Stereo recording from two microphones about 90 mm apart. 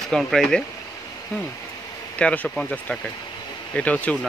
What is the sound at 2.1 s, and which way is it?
Speech, 15° left (ahead or behind).